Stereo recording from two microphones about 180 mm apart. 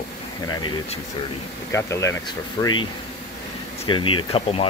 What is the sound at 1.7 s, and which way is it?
Speech, 15° left (ahead or behind).